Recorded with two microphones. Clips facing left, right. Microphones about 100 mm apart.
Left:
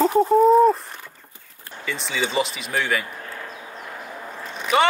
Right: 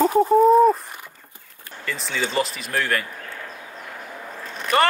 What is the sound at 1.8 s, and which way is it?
Speech, centre (ahead or behind).